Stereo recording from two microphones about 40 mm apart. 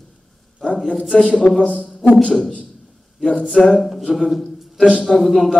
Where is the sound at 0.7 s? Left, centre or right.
Centre.